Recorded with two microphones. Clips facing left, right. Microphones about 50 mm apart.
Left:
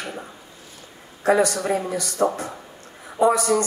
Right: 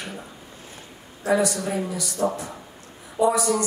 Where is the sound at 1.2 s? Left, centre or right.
Left.